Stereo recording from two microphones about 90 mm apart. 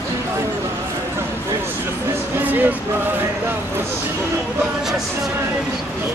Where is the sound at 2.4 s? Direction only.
20° right (ahead or behind).